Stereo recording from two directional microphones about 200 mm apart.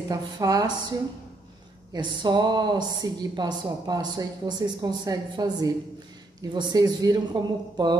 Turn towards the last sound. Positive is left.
turn(degrees=-20)  # may be behind; listen again after turning